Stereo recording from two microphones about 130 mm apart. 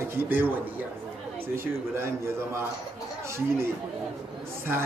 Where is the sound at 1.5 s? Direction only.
20° right (ahead or behind).